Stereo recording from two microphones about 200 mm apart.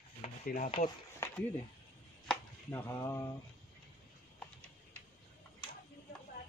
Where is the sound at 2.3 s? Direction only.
10° left (ahead or behind).